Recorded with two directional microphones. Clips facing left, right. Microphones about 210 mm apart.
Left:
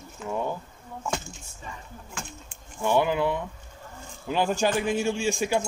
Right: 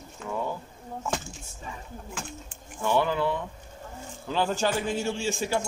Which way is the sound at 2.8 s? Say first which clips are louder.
Left 2 dB; 15° left (ahead or behind).